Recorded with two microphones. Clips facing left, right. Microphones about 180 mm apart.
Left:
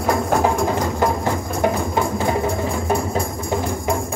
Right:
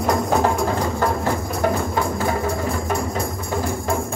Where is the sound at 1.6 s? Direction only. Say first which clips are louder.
Left 2 dB; 20° left (ahead or behind).